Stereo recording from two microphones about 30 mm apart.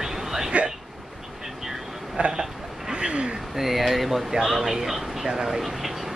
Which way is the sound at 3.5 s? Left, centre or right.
Centre.